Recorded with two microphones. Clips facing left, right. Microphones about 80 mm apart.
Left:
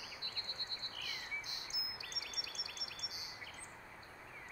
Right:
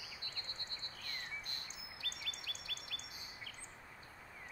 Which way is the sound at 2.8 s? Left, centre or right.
Centre.